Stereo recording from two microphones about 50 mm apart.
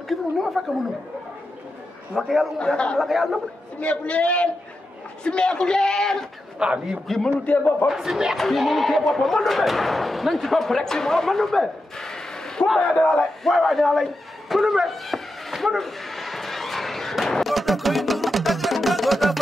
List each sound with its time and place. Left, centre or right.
0.1 s a sound: centre
2.1 s speech: centre
2.6 s a man's voice: centre
3.0 s speech: centre
3.8 s a man's voice: left
6.6 s speech: centre
7.2 s a man's voice: left
7.9 s speech: centre
12.9 s a man's voice: left
13.2 s speech: centre
14.5 s a sound: centre